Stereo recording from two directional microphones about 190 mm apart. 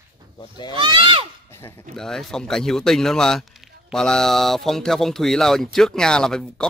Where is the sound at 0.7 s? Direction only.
25° right (ahead or behind).